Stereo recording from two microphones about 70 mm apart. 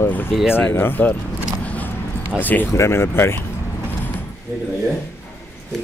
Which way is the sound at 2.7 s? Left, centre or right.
Left.